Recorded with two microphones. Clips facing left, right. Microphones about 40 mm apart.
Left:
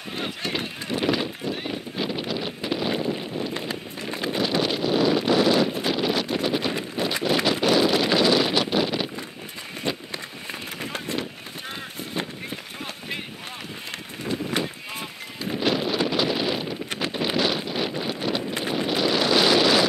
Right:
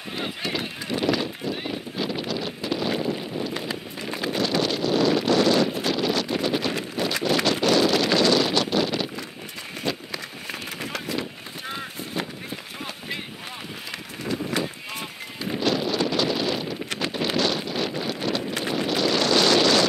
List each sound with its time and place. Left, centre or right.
0.5 s clip-clop: centre
2.0 s wind: centre
4.0 s a sound: centre
9.8 s run: left
15.6 s wind noise: centre